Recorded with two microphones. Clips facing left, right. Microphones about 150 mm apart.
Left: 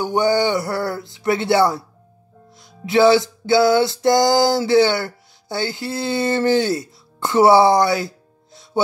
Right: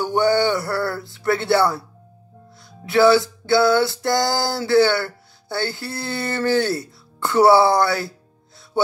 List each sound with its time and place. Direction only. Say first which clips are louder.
0.0 s music: even; 20° left (ahead or behind)